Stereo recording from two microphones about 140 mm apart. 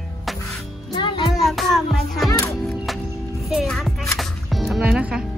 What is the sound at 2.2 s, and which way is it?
Music, 25° left (ahead or behind).